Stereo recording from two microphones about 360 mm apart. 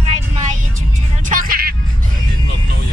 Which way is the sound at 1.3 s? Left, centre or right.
Right.